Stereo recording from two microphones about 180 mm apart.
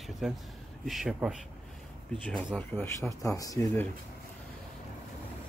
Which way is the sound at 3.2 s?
20° left (ahead or behind).